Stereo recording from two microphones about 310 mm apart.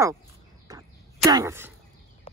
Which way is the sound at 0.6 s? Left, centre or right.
Centre.